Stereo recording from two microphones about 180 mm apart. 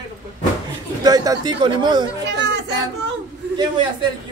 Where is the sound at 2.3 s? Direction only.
80° right.